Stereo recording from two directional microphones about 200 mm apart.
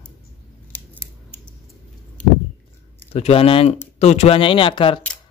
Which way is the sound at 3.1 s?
30° left (ahead or behind).